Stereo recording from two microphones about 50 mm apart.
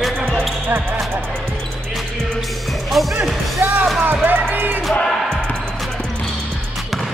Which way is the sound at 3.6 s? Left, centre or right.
Right.